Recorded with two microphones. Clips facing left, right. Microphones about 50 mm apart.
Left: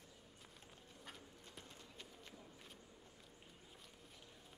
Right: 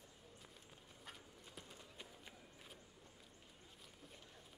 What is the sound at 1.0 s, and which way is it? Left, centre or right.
Clip-clop, centre.